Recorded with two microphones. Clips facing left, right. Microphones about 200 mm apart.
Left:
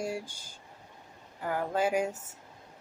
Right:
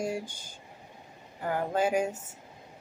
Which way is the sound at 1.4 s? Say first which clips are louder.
Right 1 dB; 25° right (ahead or behind).